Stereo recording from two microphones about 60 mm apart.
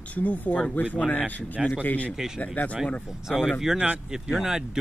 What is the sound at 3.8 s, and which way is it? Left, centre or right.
Speech, right.